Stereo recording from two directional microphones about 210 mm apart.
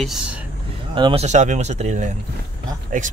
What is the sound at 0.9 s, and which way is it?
Speech, 25° right (ahead or behind).